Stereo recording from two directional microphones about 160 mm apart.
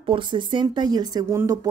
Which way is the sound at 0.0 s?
30° right (ahead or behind).